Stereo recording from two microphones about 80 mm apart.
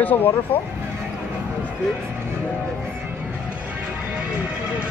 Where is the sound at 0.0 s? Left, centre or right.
Left.